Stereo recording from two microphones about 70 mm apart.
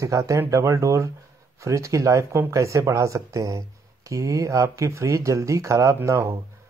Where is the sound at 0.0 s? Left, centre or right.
Right.